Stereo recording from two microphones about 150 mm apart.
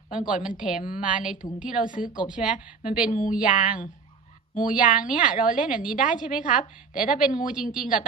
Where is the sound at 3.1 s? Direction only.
60° left (ahead or behind).